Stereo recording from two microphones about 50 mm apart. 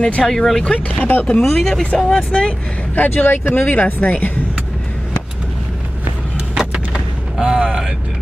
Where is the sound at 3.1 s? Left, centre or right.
Left.